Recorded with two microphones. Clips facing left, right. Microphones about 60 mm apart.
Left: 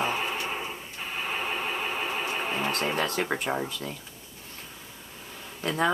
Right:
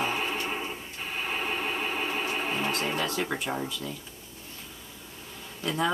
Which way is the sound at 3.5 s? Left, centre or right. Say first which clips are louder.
Left 3 dB; left.